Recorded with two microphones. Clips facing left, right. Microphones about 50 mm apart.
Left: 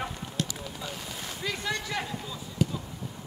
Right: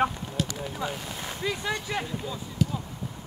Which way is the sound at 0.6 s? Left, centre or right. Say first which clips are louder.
Right 5 dB; right.